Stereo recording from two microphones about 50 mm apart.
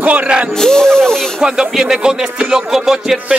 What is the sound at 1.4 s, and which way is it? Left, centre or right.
Speech, centre.